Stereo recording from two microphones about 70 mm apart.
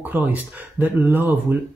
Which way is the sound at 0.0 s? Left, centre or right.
Right.